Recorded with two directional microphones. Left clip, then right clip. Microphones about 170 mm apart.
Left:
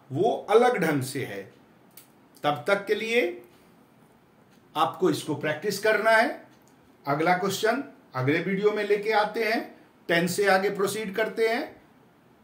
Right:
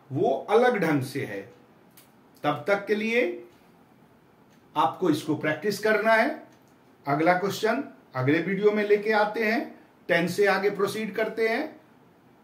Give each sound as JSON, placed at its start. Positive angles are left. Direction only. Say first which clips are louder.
{"t": 0.1, "sound": "speech", "louder": "left 1 dB", "side_deg": 30}
{"t": 2.4, "sound": "a man's voice", "louder": "even", "side_deg": 30}
{"t": 4.7, "sound": "a man's voice", "louder": "right 1 dB", "side_deg": 25}